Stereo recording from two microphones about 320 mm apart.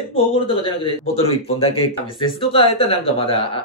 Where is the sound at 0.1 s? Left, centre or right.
Centre.